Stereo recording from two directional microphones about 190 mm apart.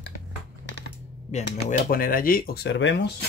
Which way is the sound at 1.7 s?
50° left (ahead or behind).